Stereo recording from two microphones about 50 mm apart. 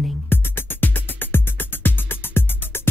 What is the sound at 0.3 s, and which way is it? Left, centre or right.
Music, left.